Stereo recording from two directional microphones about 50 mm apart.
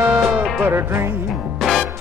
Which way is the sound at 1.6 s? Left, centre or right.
Centre.